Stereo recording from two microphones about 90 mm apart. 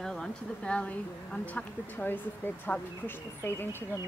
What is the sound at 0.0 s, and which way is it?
Speech, 5° left (ahead or behind).